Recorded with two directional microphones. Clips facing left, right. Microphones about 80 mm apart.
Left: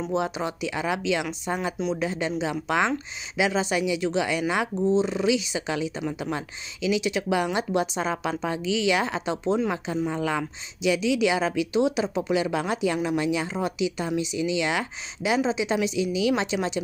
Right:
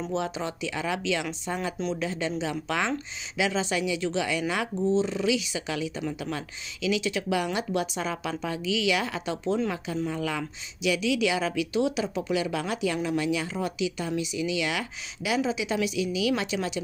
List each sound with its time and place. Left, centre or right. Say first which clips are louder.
0.1 s a woman's voice: left 4 dB; centre